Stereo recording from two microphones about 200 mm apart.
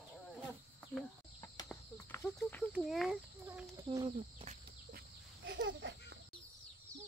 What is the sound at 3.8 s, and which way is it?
Speech, 25° right (ahead or behind).